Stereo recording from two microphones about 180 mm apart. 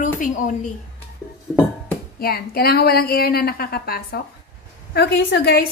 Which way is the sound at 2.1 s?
60° left (ahead or behind).